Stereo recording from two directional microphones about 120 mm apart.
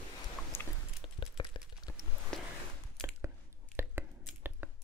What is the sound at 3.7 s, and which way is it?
Whispering, 20° right (ahead or behind).